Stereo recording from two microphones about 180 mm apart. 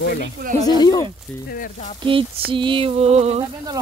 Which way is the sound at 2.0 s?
30° right (ahead or behind).